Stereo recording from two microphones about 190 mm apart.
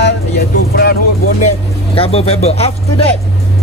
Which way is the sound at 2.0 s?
30° left (ahead or behind).